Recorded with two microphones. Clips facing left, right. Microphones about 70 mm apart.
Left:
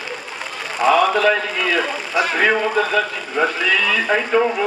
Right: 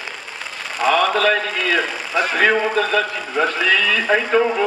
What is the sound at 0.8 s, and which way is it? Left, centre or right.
A man's voice, centre.